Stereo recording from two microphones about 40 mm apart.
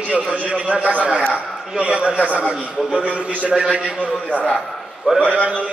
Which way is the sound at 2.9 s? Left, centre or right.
Left.